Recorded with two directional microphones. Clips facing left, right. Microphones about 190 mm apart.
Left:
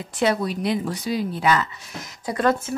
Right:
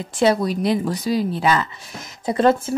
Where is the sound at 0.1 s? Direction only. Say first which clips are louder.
Right 4 dB; 30° right (ahead or behind).